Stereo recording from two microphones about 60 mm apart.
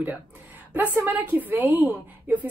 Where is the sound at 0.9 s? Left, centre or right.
Right.